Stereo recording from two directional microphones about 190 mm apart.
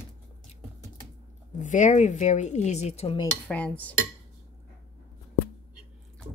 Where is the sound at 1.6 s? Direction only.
40° left (ahead or behind).